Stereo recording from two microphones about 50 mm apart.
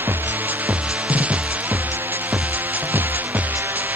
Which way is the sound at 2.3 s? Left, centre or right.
Right.